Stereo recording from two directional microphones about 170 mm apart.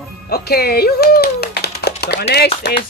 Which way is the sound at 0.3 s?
70° left (ahead or behind).